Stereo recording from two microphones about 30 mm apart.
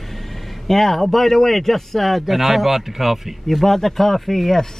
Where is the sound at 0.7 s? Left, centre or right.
Centre.